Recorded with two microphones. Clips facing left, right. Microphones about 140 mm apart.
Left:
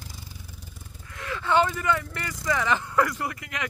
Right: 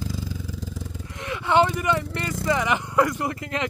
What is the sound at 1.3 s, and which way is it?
Vehicle, 20° right (ahead or behind).